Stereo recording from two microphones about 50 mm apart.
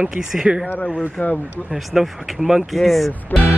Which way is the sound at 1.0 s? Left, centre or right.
Left.